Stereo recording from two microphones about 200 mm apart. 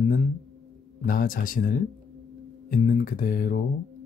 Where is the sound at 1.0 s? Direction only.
45° left (ahead or behind).